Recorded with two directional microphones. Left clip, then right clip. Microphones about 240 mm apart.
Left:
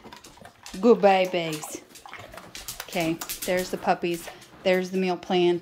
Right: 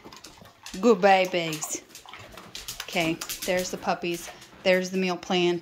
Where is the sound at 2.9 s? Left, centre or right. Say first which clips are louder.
Right 1 dB; centre.